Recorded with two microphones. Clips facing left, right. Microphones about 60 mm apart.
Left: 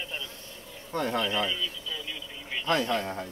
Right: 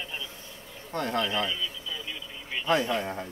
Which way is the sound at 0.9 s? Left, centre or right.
Centre.